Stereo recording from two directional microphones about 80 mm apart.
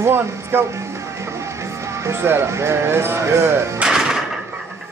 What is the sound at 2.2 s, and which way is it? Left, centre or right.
Speech, right.